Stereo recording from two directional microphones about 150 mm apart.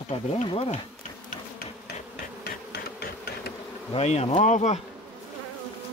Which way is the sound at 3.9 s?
45° left (ahead or behind).